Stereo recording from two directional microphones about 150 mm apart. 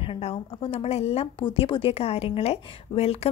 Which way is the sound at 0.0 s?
40° left (ahead or behind).